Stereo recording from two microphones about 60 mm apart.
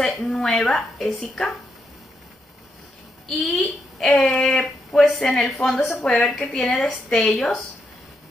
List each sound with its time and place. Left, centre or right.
0.0 s a woman's voice: centre
3.3 s a woman's voice: centre
6.7 s a woman's voice: left
7.1 s a woman's voice: centre